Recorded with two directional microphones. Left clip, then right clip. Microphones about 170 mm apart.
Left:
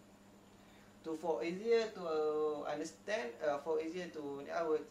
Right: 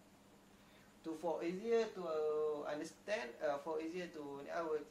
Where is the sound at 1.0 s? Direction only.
15° right (ahead or behind).